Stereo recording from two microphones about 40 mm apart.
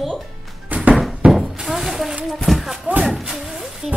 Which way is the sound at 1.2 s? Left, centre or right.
Right.